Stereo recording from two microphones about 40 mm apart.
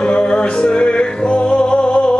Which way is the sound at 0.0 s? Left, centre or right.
Left.